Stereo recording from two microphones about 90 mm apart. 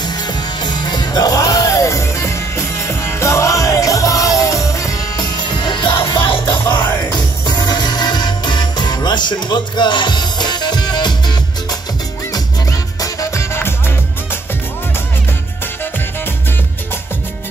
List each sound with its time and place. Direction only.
0.0 s music: 50° left (ahead or behind)
6.6 s music: 30° left (ahead or behind)
7.1 s music: 50° left (ahead or behind)
13.0 s music: 35° left (ahead or behind)